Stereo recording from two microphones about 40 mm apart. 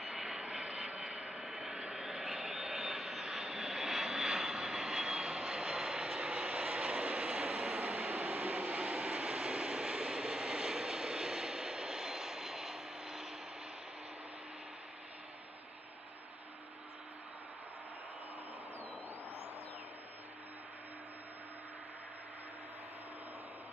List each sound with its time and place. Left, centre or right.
0.0 s vehicle: centre
1.4 s vehicle: centre